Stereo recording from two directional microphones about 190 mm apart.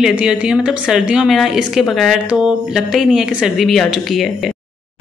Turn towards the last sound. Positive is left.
turn(degrees=0)  # may be behind; listen again after turning